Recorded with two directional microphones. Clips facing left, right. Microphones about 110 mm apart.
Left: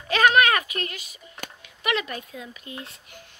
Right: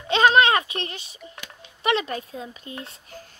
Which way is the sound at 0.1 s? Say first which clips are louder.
Right 2 dB; 25° right (ahead or behind).